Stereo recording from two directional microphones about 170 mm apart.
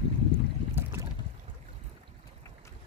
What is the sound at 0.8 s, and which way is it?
Boat, 15° right (ahead or behind).